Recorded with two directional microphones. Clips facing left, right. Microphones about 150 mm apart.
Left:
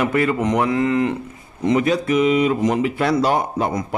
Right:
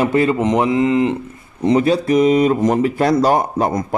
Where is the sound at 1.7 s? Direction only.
35° right (ahead or behind).